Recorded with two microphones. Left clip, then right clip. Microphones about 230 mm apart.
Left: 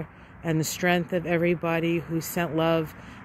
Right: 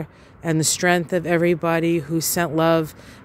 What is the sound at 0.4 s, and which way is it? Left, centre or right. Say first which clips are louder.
Speech: right 6 dB; centre.